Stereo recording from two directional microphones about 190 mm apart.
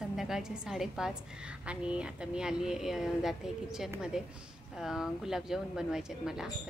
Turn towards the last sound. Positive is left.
turn(degrees=-5)  # may be behind; listen again after turning